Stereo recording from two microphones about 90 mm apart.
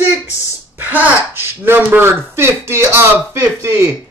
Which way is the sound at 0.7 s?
20° right (ahead or behind).